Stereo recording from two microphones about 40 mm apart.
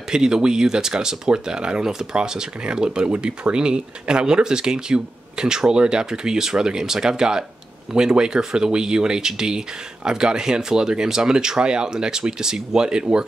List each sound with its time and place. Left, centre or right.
0.1 s speech: centre